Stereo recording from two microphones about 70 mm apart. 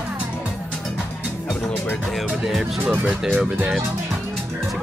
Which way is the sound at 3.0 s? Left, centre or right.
Centre.